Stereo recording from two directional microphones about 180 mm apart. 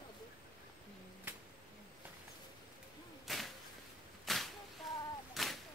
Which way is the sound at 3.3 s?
Centre (ahead or behind).